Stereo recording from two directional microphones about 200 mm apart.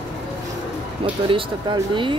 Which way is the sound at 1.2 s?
25° right (ahead or behind).